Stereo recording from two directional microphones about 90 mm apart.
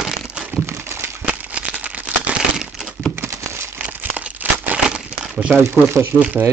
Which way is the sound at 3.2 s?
25° right (ahead or behind).